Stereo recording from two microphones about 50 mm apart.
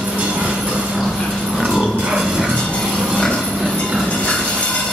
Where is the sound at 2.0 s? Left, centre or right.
Centre.